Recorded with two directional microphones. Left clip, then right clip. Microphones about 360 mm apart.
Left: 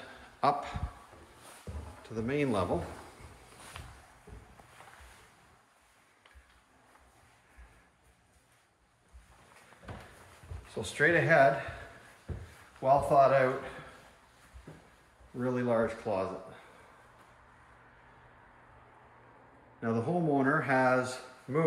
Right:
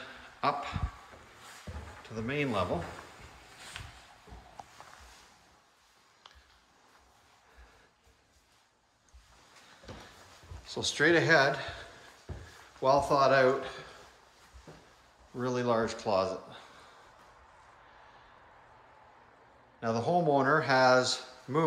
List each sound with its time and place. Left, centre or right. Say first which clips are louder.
0.4 s speech: left 2 dB; centre
2.0 s speech: left 2 dB; centre
10.7 s speech: right 1 dB; centre
12.8 s speech: left 1 dB; centre
15.3 s speech: even; centre
19.8 s speech: right 3 dB; centre